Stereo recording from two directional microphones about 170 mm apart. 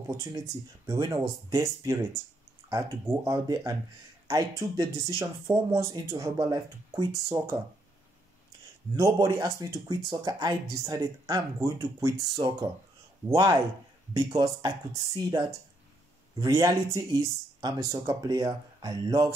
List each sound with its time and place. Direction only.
0.1 s speech: 20° right (ahead or behind)
8.9 s speech: 20° right (ahead or behind)